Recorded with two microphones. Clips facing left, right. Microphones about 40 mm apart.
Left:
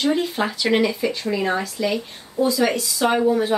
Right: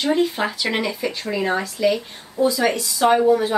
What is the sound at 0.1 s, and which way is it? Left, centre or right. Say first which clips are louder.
A woman's voice: right 2 dB; centre.